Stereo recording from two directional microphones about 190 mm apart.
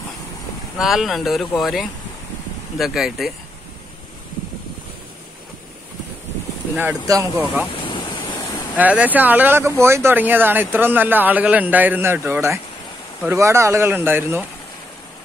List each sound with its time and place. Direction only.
0.7 s speech: centre (ahead or behind)
6.8 s speech: 15° right (ahead or behind)
7.8 s waves: 25° left (ahead or behind)
8.7 s speech: 10° right (ahead or behind)